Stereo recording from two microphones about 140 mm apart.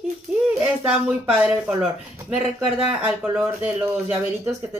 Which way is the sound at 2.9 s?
10° right (ahead or behind).